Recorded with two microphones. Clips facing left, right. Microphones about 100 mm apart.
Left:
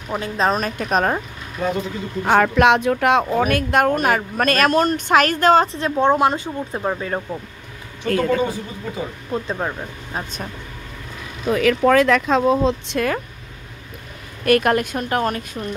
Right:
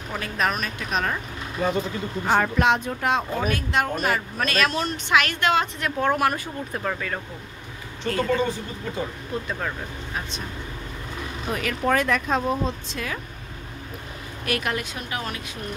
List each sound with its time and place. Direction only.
0.1 s speech: 25° left (ahead or behind); by 1.2 s 45° left (ahead or behind)
2.2 s speech: 90° left; by 7.2 s 25° left (ahead or behind)
8.1 s speech: 50° left (ahead or behind)
8.4 s speech: 10° left (ahead or behind)
9.3 s speech: 30° left (ahead or behind)
11.6 s speech: 90° left; by 13.2 s 60° left (ahead or behind)
14.4 s speech: 50° left (ahead or behind)